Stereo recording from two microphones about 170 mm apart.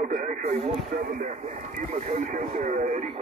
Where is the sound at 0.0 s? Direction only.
50° right (ahead or behind).